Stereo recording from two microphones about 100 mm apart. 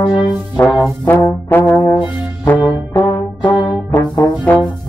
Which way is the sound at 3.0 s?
55° left (ahead or behind).